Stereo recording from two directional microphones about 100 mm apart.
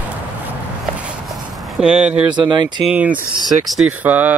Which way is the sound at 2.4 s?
50° right (ahead or behind).